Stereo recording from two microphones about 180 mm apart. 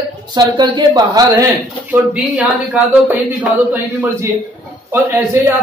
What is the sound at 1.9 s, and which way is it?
A man's voice, 5° right (ahead or behind).